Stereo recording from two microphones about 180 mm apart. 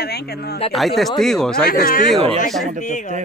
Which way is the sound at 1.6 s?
50° left (ahead or behind).